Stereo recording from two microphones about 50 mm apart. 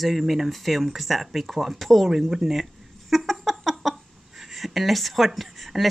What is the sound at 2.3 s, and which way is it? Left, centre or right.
Speech, centre.